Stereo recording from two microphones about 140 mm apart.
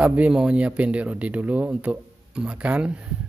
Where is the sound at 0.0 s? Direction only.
10° right (ahead or behind).